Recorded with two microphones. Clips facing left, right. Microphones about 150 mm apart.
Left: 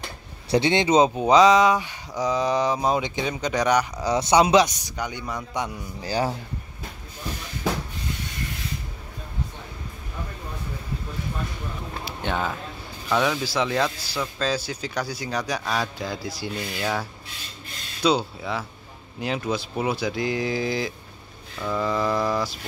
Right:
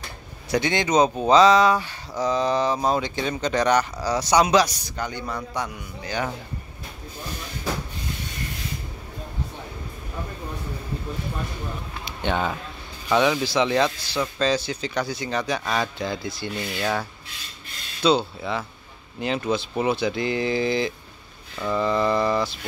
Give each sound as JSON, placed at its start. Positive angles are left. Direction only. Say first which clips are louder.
{"t": 0.5, "sound": "speech", "louder": "left 3 dB", "side_deg": 25}
{"t": 4.0, "sound": "a man's voice", "louder": "left 1 dB", "side_deg": 25}
{"t": 6.0, "sound": "speech", "louder": "left 3 dB", "side_deg": 35}
{"t": 12.0, "sound": "a sound", "louder": "right 2 dB", "side_deg": 5}
{"t": 13.1, "sound": "speech", "louder": "right 3 dB", "side_deg": 0}